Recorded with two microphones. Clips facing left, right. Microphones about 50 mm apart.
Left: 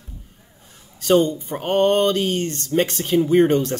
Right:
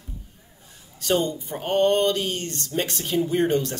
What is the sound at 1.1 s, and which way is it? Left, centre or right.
A man's voice, left.